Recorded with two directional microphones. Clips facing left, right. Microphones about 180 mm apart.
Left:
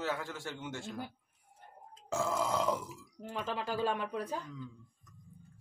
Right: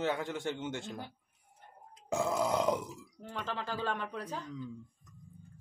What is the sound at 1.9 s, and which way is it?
Grunt, 15° right (ahead or behind).